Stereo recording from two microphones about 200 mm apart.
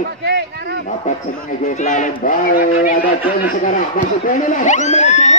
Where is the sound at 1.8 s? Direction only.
40° left (ahead or behind).